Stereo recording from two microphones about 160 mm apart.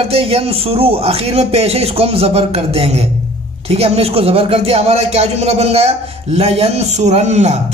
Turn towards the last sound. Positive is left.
turn(degrees=-45)  # may be behind; listen again after turning